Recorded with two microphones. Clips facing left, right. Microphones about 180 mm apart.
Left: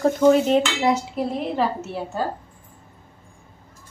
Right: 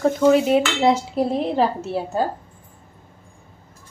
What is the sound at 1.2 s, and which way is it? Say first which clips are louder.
Speech: right 4 dB; 35° right (ahead or behind).